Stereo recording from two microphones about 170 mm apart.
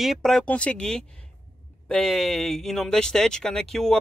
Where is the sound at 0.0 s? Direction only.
Centre (ahead or behind).